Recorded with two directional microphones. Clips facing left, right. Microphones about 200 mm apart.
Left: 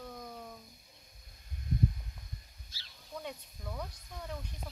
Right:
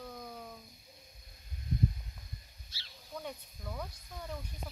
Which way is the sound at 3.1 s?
Centre (ahead or behind).